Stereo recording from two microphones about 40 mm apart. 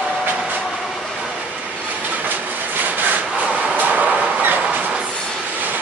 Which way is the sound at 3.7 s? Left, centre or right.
Right.